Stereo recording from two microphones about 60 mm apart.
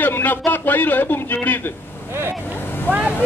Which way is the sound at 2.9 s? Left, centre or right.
Right.